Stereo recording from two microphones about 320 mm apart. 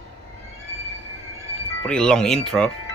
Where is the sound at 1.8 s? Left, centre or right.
Centre.